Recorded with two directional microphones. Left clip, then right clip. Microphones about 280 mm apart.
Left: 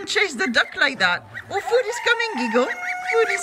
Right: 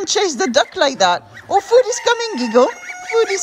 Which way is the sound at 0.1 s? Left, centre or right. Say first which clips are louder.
Right 4 dB; centre.